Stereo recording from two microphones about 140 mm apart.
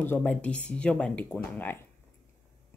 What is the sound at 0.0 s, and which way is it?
A woman's voice, 10° left (ahead or behind).